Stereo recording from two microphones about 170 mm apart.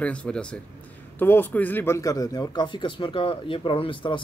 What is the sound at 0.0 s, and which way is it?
Speech, 5° left (ahead or behind).